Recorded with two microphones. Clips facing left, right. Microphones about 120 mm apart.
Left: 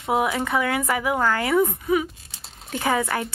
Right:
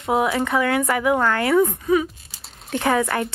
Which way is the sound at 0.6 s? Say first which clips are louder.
Right 4 dB; 15° left (ahead or behind).